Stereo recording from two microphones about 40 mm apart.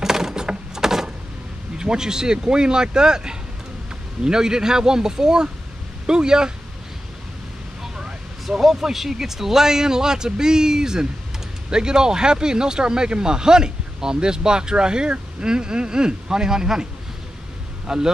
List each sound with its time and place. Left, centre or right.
0.0 s sewing machine: centre
1.8 s speech: centre
7.8 s speech: centre
17.8 s speech: centre